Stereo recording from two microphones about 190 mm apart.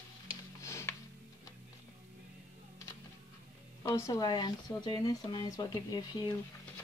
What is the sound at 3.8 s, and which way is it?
Speech, 15° left (ahead or behind).